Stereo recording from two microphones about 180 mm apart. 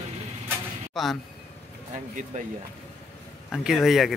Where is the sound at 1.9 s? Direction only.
45° right (ahead or behind).